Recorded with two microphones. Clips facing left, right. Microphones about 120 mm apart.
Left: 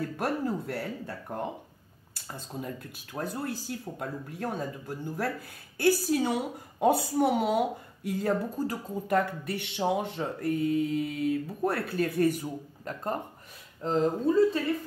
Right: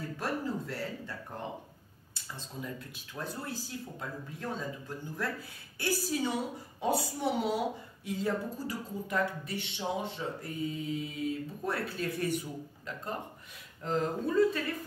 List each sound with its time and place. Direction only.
0.2 s speech: 55° left (ahead or behind)
2.2 s a woman's voice: 50° left (ahead or behind)
13.8 s speech: 30° left (ahead or behind)